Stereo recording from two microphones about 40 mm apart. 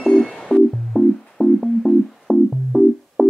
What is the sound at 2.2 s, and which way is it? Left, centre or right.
Music, centre.